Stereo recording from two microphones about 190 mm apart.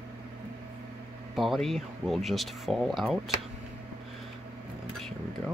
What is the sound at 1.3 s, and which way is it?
Speech, centre (ahead or behind).